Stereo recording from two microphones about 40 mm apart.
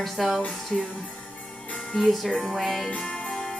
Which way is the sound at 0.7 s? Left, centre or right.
Centre.